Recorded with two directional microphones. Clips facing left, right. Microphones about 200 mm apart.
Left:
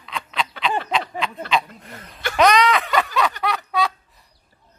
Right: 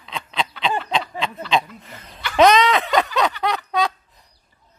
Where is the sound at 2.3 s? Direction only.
25° right (ahead or behind).